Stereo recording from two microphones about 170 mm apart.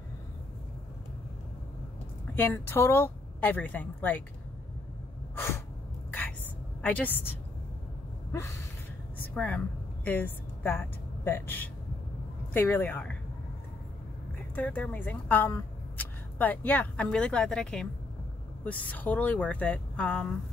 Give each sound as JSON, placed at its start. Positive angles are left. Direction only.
{"t": 2.3, "sound": "a woman's voice", "side_deg": 10}
{"t": 5.3, "sound": "a sound", "side_deg": 15}
{"t": 6.8, "sound": "a woman's voice", "side_deg": 10}
{"t": 8.3, "sound": "a sound", "side_deg": 15}
{"t": 10.0, "sound": "a woman's voice", "side_deg": 10}
{"t": 14.5, "sound": "a woman's voice", "side_deg": 10}